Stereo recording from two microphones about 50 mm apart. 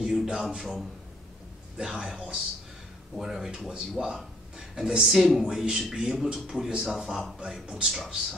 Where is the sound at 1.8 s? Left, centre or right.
Centre.